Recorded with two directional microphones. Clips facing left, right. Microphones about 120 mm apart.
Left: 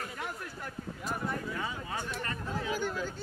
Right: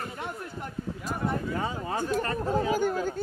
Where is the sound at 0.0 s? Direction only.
30° right (ahead or behind).